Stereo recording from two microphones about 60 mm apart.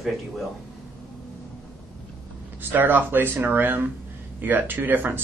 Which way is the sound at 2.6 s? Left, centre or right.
Right.